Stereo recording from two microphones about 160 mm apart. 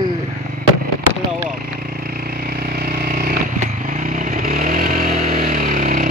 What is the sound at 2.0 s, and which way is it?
Vehicle, 70° right (ahead or behind).